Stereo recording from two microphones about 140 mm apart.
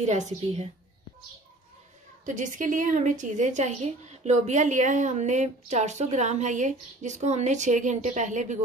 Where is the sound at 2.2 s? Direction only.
65° right (ahead or behind).